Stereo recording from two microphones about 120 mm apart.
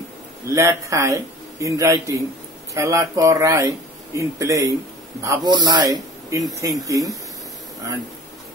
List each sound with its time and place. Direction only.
0.6 s speech: 25° right (ahead or behind)